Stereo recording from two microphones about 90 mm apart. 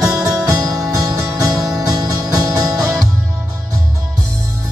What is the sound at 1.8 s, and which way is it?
Music, 45° right (ahead or behind).